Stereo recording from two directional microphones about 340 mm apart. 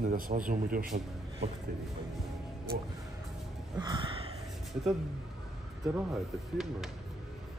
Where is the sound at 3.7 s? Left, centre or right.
Centre.